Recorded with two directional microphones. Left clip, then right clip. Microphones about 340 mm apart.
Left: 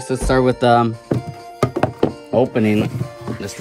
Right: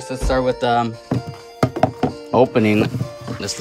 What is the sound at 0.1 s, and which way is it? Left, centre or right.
Speech, centre.